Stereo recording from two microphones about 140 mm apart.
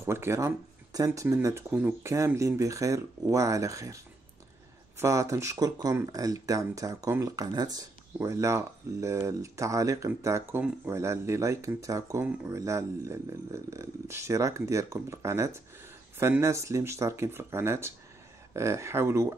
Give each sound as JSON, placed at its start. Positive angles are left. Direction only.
{"t": 0.0, "sound": "speech", "side_deg": -20}